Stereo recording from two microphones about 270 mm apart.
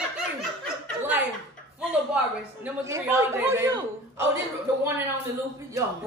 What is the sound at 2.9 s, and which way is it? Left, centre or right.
A man's voice, centre.